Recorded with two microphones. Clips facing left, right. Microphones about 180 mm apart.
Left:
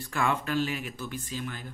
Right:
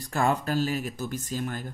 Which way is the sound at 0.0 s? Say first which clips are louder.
Right 3 dB; 40° right (ahead or behind).